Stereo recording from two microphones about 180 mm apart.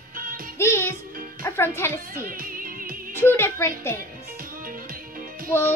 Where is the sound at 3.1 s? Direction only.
10° left (ahead or behind).